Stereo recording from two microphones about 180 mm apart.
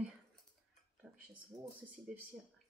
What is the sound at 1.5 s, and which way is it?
Speech, 20° right (ahead or behind).